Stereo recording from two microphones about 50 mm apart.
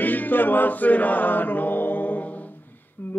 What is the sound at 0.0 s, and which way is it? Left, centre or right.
Chant, left.